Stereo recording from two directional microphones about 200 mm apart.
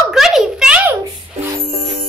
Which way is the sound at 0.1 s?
Centre (ahead or behind).